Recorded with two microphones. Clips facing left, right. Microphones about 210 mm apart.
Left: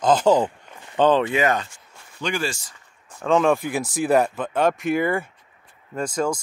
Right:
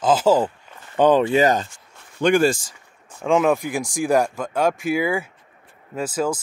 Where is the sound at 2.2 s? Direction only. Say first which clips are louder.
Right 10 dB; 55° right (ahead or behind).